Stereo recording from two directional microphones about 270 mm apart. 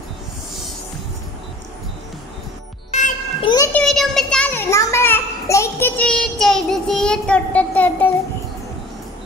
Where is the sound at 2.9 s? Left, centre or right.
Left.